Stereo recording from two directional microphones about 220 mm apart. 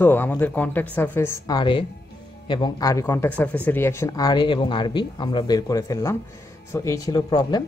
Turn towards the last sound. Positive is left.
turn(degrees=20)  # may be behind; listen again after turning